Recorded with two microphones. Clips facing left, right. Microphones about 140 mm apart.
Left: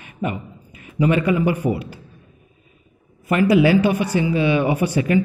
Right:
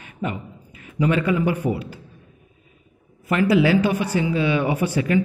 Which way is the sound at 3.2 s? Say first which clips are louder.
Left 2 dB; 15° left (ahead or behind).